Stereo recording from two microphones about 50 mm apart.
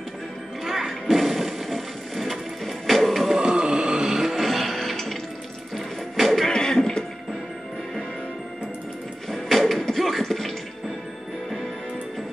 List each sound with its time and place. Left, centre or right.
0.7 s music: centre
3.3 s music: centre
6.5 s music: centre
9.3 s a sound: centre